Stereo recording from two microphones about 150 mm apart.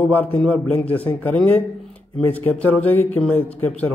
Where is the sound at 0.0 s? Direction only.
10° left (ahead or behind).